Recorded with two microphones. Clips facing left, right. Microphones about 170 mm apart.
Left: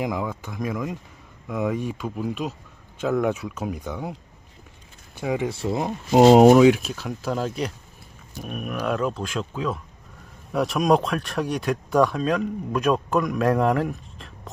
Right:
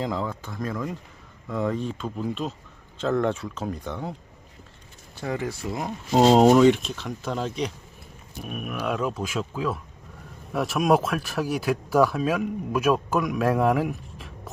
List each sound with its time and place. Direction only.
0.0 s speech: 10° left (ahead or behind)
5.2 s speech: 15° left (ahead or behind)
5.5 s speech: 25° left (ahead or behind)
6.1 s speech: 10° left (ahead or behind)